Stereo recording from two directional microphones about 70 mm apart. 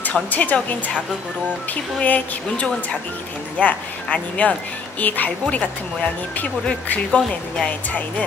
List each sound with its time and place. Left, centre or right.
0.0 s speech: left